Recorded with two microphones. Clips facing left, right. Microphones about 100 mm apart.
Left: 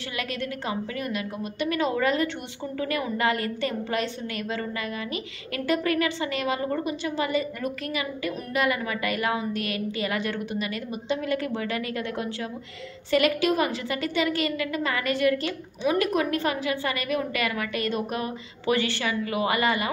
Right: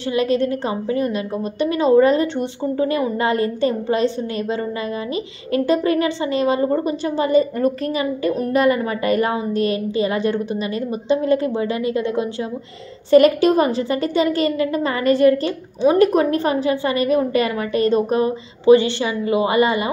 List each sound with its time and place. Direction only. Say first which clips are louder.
0.1 s a woman's voice: right 14 dB; 30° right (ahead or behind)
13.1 s a woman's voice: right 10 dB; 40° right (ahead or behind)